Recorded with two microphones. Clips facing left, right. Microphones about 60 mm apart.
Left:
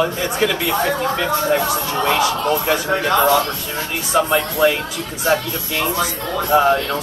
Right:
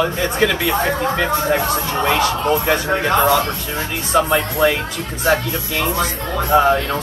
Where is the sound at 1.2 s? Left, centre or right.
Right.